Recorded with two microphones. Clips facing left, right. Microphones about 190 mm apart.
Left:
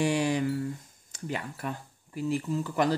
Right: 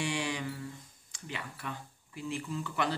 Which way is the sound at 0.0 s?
40° left (ahead or behind).